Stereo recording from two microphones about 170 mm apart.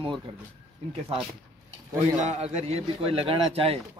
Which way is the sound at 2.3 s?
40° right (ahead or behind).